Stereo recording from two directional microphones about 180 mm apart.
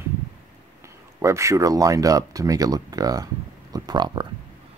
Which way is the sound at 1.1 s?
15° right (ahead or behind).